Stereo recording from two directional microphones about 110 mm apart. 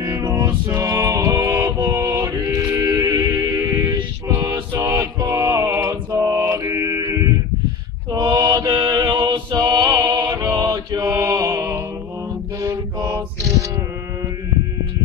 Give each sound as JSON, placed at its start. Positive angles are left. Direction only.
{"t": 0.0, "sound": "music", "side_deg": -35}
{"t": 4.3, "sound": "male singing", "side_deg": -30}
{"t": 8.1, "sound": "mantra", "side_deg": -40}